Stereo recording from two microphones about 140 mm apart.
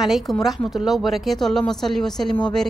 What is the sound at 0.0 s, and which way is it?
A woman's voice, centre (ahead or behind).